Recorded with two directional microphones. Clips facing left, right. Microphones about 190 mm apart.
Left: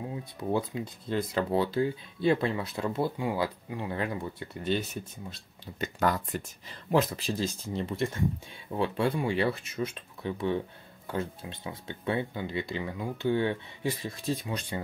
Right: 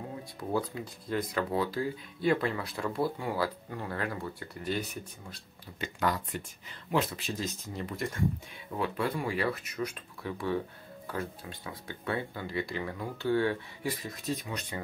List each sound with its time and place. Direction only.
0.2 s speech: 20° left (ahead or behind)
5.8 s speech: 40° left (ahead or behind)